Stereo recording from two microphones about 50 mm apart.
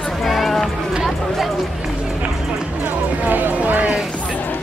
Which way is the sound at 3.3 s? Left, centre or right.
Right.